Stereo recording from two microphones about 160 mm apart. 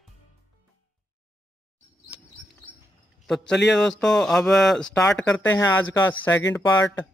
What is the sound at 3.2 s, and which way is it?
A man's voice, centre (ahead or behind).